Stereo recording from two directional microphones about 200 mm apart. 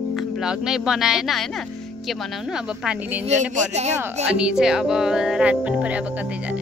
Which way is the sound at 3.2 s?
35° right (ahead or behind).